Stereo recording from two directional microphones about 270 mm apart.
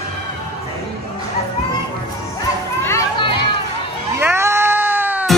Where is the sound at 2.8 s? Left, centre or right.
Centre.